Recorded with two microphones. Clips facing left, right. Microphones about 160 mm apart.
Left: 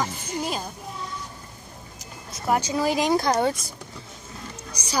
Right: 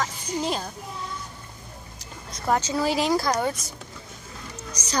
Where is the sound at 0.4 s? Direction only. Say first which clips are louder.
Right 2 dB; 5° left (ahead or behind).